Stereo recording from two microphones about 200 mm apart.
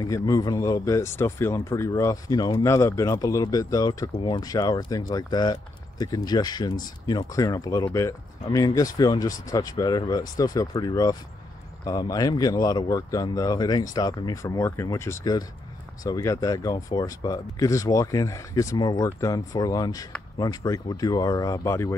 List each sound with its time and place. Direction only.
0.0 s speech: 15° left (ahead or behind)